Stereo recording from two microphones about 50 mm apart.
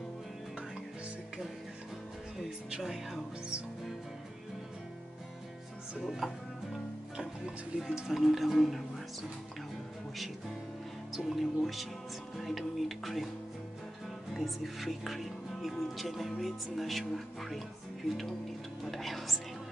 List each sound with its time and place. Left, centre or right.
2.7 s speech: centre
6.0 s speech: centre
7.7 s speech: right
8.1 s speech: centre
11.2 s speech: centre
14.3 s speech: centre
18.9 s speech: centre